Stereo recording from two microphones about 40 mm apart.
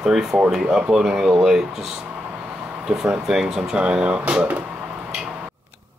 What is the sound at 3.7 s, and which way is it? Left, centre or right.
Speech, right.